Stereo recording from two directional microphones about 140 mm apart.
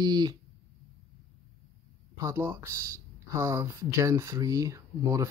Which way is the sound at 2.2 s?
20° right (ahead or behind).